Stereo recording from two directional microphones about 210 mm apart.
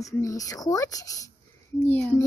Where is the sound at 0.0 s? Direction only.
15° left (ahead or behind).